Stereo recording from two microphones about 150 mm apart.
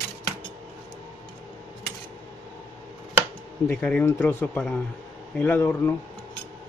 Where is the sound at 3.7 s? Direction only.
10° left (ahead or behind).